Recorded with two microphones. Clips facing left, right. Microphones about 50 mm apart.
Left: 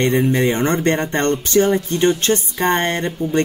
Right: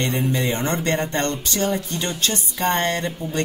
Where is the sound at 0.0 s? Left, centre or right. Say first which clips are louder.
Left 6 dB; left.